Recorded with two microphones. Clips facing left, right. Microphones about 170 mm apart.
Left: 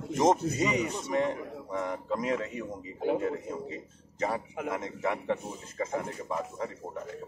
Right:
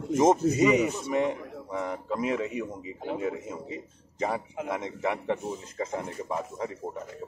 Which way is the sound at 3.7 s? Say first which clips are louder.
Right 2 dB; 15° right (ahead or behind).